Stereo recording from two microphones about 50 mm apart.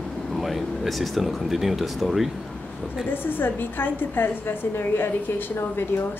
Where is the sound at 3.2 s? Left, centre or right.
Left.